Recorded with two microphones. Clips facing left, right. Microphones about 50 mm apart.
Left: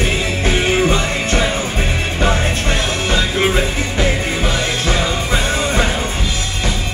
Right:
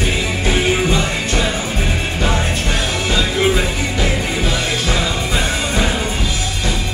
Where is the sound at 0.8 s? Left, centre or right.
Left.